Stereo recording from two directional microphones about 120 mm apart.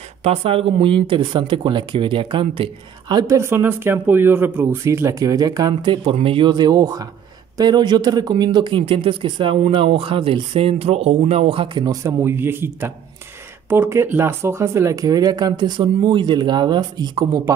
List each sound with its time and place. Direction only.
0.2 s speech: 60° right (ahead or behind); by 3.3 s 35° right (ahead or behind)
3.3 s speech: 20° right (ahead or behind); by 17.4 s 35° right (ahead or behind)